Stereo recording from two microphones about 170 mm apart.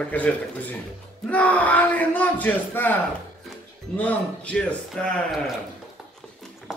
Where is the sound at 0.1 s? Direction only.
10° left (ahead or behind).